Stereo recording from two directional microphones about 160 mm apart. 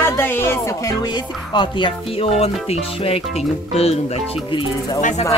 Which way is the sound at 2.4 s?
35° left (ahead or behind).